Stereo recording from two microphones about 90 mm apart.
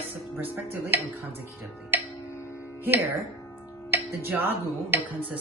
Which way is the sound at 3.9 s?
20° right (ahead or behind).